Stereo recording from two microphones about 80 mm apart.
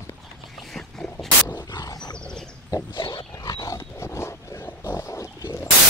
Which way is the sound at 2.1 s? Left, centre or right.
Centre.